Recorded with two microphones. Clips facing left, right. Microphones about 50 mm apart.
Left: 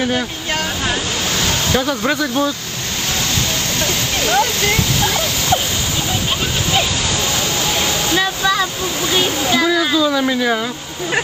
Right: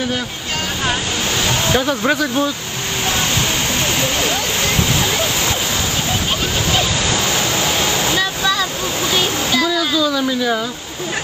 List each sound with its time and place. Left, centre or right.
1.8 s speech: centre
4.3 s speech: left
8.2 s waterfall: centre
9.1 s speech: centre